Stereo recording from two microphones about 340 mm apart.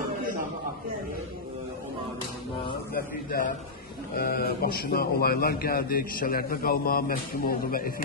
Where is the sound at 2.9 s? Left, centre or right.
Left.